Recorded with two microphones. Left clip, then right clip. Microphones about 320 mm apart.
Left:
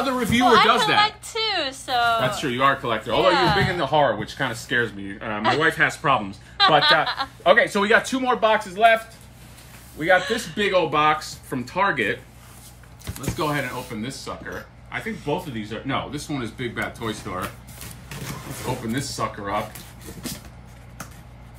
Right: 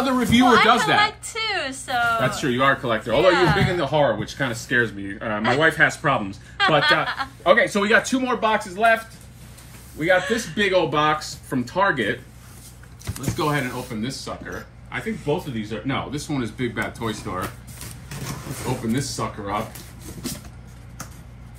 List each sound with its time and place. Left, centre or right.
0.0 s a woman's voice: centre
9.9 s speech: centre
19.1 s speech: centre